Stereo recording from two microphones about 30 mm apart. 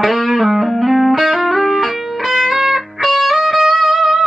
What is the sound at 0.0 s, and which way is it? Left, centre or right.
Music, centre.